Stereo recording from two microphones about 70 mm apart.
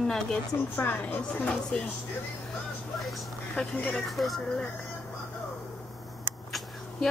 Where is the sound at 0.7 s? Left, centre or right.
Left.